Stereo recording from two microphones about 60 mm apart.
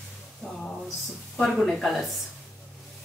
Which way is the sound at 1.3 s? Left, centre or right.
Centre.